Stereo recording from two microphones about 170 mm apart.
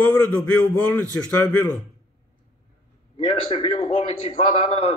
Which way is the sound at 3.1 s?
30° left (ahead or behind).